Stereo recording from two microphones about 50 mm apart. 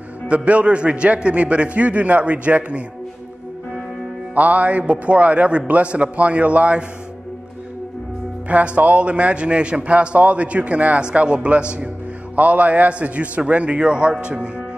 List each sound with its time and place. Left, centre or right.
0.3 s a man's voice: right
4.4 s a man's voice: right
8.5 s a man's voice: right